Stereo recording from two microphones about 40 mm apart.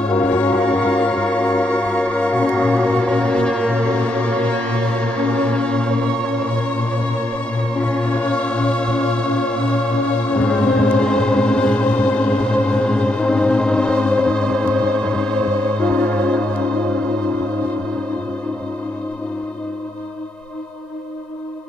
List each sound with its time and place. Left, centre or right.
0.0 s music: left
7.7 s music: left